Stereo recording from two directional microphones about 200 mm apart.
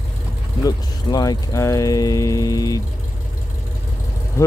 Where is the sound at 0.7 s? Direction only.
20° left (ahead or behind).